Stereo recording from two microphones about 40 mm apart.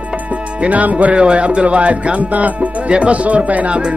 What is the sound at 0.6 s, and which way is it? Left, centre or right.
Speech, right.